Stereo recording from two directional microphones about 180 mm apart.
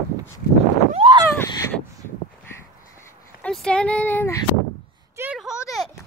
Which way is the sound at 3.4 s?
5° left (ahead or behind).